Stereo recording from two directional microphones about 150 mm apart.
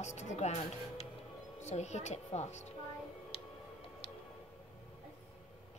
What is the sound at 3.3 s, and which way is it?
Music, 40° left (ahead or behind).